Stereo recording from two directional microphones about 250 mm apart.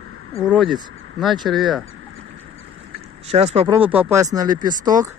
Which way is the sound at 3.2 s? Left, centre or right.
Right.